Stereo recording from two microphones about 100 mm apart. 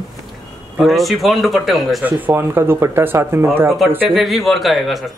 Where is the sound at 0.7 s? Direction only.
Centre (ahead or behind).